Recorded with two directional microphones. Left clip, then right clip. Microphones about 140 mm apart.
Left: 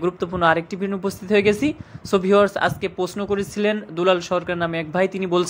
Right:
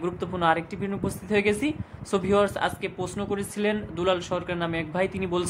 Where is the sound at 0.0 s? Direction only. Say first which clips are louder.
Left 6 dB; 30° left (ahead or behind).